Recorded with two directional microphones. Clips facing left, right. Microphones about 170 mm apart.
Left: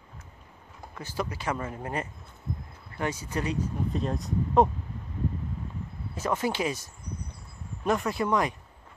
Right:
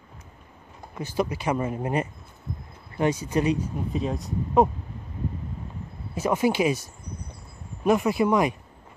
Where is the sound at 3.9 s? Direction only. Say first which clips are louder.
Right 3 dB; centre (ahead or behind).